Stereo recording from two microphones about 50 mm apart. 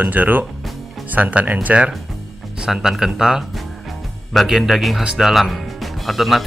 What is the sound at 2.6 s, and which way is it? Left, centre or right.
Speech, centre.